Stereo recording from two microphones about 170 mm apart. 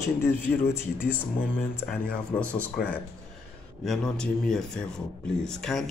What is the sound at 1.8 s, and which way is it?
Speech, 5° left (ahead or behind).